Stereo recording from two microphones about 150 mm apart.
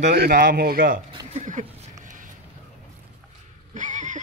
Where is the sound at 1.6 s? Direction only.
55° right (ahead or behind).